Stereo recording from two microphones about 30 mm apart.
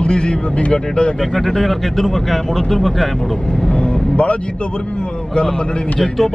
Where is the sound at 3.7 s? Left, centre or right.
Left.